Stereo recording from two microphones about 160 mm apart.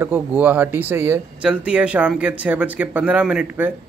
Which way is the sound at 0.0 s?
15° right (ahead or behind).